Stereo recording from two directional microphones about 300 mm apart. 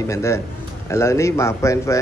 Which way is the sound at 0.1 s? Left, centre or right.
Centre.